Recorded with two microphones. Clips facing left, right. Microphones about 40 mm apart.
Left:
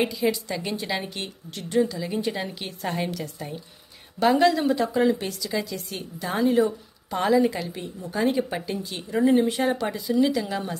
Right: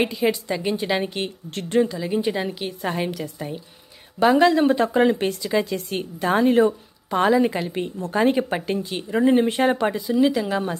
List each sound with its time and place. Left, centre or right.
0.0 s speech: right
0.6 s speech: centre
1.5 s a woman's voice: right
2.0 s a woman's voice: centre
4.4 s a woman's voice: right
7.1 s speech: right
8.1 s a woman's voice: right
9.8 s speech: right